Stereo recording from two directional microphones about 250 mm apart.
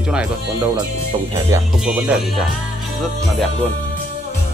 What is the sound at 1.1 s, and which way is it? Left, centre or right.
Speech, centre.